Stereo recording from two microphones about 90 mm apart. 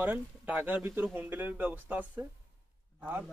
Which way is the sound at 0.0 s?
20° right (ahead or behind).